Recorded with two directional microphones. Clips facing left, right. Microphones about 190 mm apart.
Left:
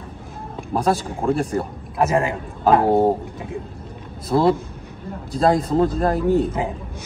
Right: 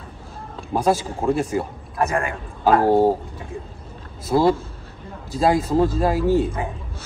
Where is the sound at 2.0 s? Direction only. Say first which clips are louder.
Left 3 dB; 25° left (ahead or behind).